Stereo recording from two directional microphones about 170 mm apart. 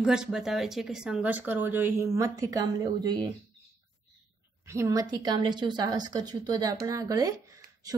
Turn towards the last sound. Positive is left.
turn(degrees=-20)  # may be behind; listen again after turning